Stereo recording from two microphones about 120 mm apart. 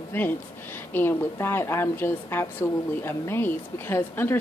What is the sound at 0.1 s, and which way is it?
A woman's voice, 20° left (ahead or behind).